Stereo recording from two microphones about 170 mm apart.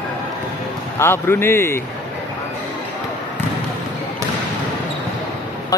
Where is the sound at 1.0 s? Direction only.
15° left (ahead or behind).